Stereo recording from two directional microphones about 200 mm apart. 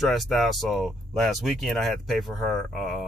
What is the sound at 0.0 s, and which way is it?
Speech, centre (ahead or behind).